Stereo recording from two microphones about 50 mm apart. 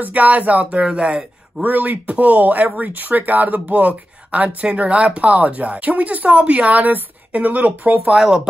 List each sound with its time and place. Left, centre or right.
0.0 s speech: right
8.1 s speech: centre